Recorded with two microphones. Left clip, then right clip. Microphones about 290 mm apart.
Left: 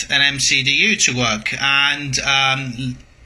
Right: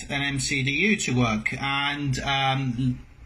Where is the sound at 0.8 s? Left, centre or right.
Right.